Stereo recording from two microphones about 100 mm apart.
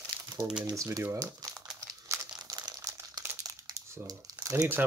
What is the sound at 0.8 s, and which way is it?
Speech, 25° right (ahead or behind).